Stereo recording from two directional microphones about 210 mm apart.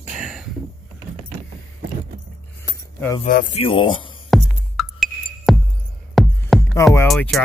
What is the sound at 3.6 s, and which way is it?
Speech, 25° left (ahead or behind).